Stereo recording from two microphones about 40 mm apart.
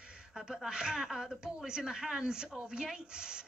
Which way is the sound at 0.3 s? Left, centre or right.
Centre.